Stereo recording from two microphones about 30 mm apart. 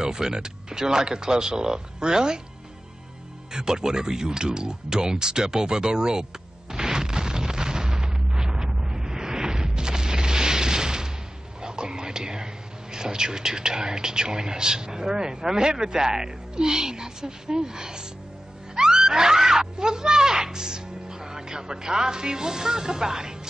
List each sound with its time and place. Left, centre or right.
0.0 s speech: right
3.5 s speech: right
6.7 s boom: right
11.6 s whispering: right
12.9 s speech: right
18.8 s screaming: right